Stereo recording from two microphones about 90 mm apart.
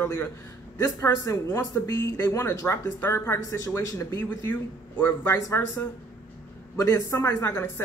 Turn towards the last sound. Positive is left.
turn(degrees=25)  # may be behind; listen again after turning